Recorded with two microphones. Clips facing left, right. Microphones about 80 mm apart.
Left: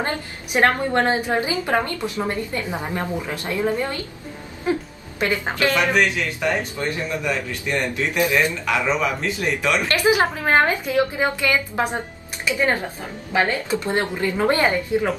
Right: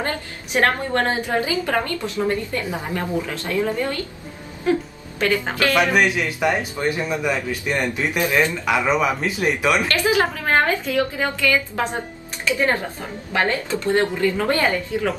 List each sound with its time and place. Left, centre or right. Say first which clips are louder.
0.0 s a woman's voice: even; left
5.8 s a man's voice: right 4 dB; centre
9.8 s a woman's voice: left 1 dB; left
13.3 s a woman's voice: left 1 dB; centre